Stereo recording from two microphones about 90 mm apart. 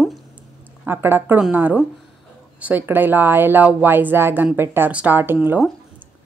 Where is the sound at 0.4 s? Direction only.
25° right (ahead or behind).